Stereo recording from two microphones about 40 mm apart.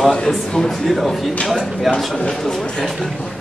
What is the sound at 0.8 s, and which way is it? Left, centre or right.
Speech, centre.